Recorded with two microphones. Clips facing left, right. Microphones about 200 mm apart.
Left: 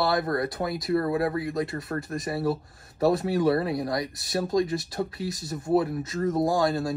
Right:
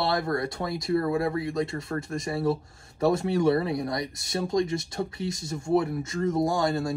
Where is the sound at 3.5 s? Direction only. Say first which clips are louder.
Even; 25° right (ahead or behind).